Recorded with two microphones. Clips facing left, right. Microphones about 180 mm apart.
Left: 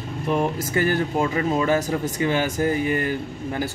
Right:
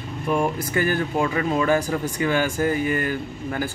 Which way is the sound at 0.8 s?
20° left (ahead or behind).